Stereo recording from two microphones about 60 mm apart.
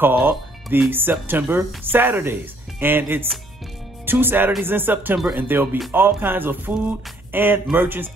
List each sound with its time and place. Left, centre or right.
0.0 s speech: right